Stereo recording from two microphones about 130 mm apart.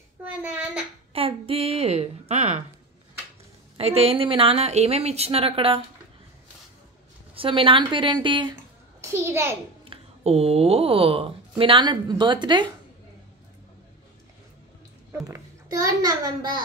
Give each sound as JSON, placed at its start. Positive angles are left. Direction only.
{"t": 0.2, "sound": "child singing", "side_deg": -15}
{"t": 1.1, "sound": "a woman's voice", "side_deg": -45}
{"t": 3.7, "sound": "a woman's voice", "side_deg": -50}
{"t": 7.3, "sound": "a woman's voice", "side_deg": -40}
{"t": 9.0, "sound": "a child's voice", "side_deg": -20}
{"t": 9.8, "sound": "speech", "side_deg": -50}
{"t": 15.2, "sound": "a child's voice", "side_deg": -25}